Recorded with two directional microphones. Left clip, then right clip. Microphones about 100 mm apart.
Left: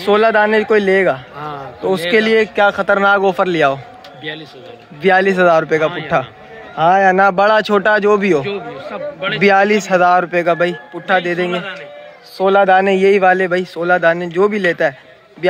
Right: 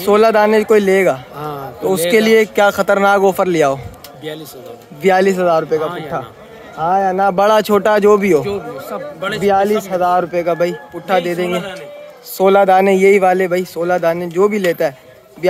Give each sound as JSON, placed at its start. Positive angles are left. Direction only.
{"t": 0.0, "sound": "a man's voice", "side_deg": -25}
{"t": 0.7, "sound": "a man's voice", "side_deg": -35}
{"t": 2.4, "sound": "a man's voice", "side_deg": -55}
{"t": 5.0, "sound": "a man's voice", "side_deg": -30}
{"t": 5.6, "sound": "speech", "side_deg": 10}
{"t": 7.3, "sound": "a man's voice", "side_deg": -35}
{"t": 9.4, "sound": "a man's voice", "side_deg": 10}
{"t": 12.6, "sound": "a man's voice", "side_deg": -35}